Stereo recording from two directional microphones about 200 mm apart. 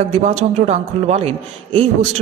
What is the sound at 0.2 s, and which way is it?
A man's voice, 35° right (ahead or behind).